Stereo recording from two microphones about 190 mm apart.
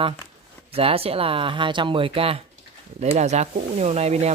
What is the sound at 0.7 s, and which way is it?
Speech, 30° right (ahead or behind).